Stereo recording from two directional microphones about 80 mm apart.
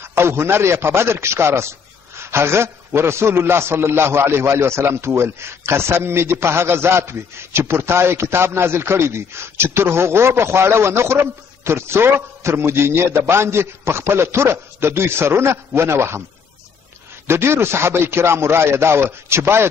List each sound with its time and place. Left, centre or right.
0.0 s a man's voice: right
17.3 s a man's voice: right